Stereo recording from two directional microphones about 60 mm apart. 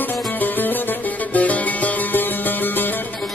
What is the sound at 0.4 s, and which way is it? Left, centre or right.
Music, left.